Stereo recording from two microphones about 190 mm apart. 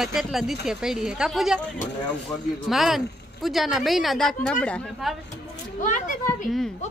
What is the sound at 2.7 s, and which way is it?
Speech, centre (ahead or behind).